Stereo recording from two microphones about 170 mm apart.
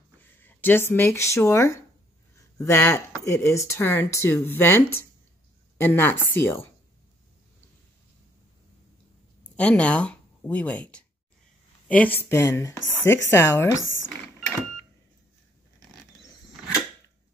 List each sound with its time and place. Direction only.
0.2 s speech: 10° left (ahead or behind)
9.6 s speech: 5° left (ahead or behind)